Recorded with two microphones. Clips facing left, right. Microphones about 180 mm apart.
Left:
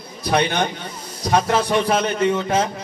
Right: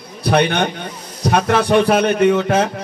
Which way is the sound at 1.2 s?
65° right (ahead or behind).